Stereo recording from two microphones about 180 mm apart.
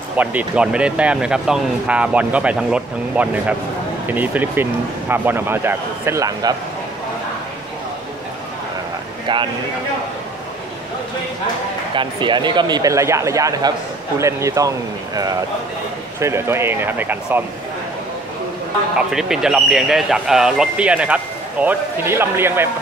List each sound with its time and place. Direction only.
0.2 s speech: 10° right (ahead or behind)
9.3 s speech: 25° right (ahead or behind)
11.9 s speech: 25° right (ahead or behind)
16.2 s speech: 15° right (ahead or behind)
18.9 s speech: centre (ahead or behind)